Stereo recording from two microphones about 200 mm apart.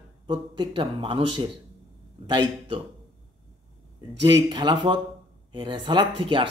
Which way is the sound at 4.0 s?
20° right (ahead or behind).